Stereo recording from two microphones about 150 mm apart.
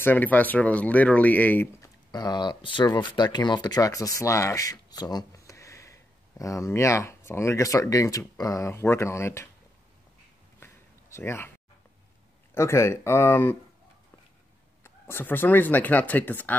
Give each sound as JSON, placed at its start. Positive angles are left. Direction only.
{"t": 0.0, "sound": "speech", "side_deg": 10}
{"t": 2.0, "sound": "speech", "side_deg": 30}
{"t": 10.6, "sound": "a sound", "side_deg": 15}
{"t": 12.5, "sound": "speech", "side_deg": 20}
{"t": 14.8, "sound": "speech", "side_deg": 15}